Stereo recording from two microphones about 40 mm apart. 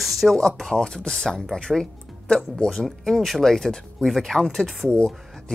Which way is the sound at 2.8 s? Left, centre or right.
Centre.